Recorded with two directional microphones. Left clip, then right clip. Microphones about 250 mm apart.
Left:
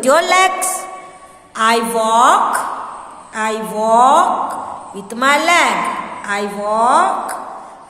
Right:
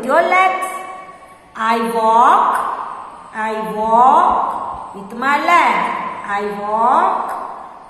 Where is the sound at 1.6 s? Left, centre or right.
Left.